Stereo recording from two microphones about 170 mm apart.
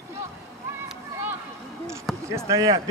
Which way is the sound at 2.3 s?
20° right (ahead or behind).